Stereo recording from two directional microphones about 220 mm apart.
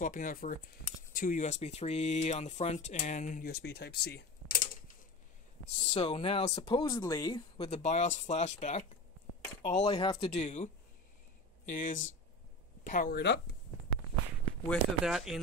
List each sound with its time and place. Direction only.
0.0 s speech: 35° left (ahead or behind)
5.8 s speech: 25° left (ahead or behind)
9.4 s speech: 20° left (ahead or behind); by 13.4 s 50° left (ahead or behind)
14.7 s speech: centre (ahead or behind)